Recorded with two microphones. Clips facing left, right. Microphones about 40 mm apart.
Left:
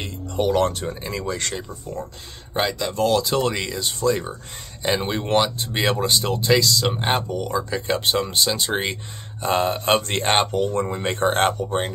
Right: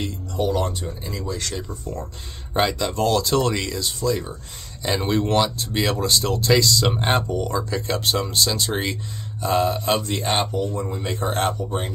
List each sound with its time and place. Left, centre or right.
0.4 s speech: left
1.7 s speech: centre
2.5 s speech: centre
3.8 s speech: left
4.8 s speech: centre
6.6 s speech: centre; by 8.9 s left
9.4 s speech: left
10.0 s speech: left